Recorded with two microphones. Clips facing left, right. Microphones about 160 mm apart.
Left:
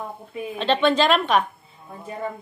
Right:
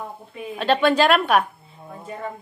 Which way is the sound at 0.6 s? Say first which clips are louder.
Right 1 dB; 10° right (ahead or behind).